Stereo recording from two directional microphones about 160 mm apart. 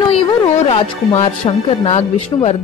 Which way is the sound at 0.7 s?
45° left (ahead or behind).